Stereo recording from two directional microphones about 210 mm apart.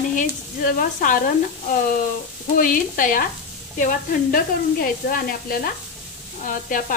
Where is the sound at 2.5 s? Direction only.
40° left (ahead or behind).